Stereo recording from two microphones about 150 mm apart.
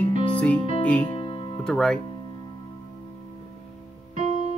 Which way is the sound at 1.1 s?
40° left (ahead or behind).